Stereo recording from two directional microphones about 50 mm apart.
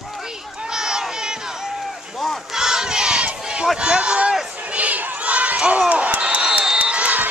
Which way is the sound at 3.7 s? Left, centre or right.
Centre.